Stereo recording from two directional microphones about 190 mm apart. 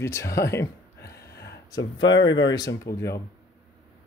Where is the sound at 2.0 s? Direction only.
85° left.